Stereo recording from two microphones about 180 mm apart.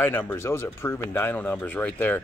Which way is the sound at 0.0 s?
10° left (ahead or behind).